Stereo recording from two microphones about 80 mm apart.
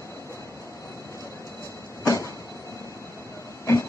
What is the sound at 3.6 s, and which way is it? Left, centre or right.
Train, left.